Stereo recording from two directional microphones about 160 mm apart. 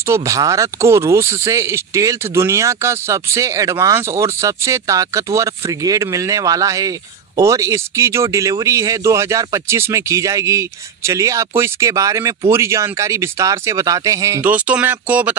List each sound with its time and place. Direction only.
0.0 s speech: 20° right (ahead or behind)
14.5 s speech: 10° right (ahead or behind)